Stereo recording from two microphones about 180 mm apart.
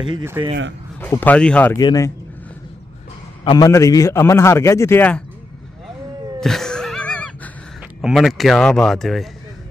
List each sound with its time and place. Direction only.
0.4 s speech: 20° right (ahead or behind)
1.0 s a man's voice: 10° left (ahead or behind)
1.8 s a man's voice: 20° left (ahead or behind)
3.4 s a man's voice: 20° left (ahead or behind)
6.4 s a sound: centre (ahead or behind)
8.0 s speech: centre (ahead or behind)